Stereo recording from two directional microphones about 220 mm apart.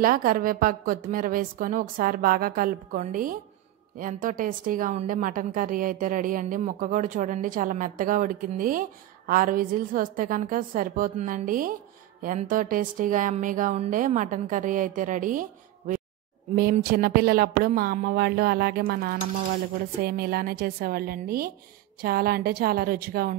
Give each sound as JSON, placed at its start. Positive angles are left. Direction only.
{"t": 0.0, "sound": "a woman's voice", "side_deg": -40}
{"t": 16.7, "sound": "speech", "side_deg": -45}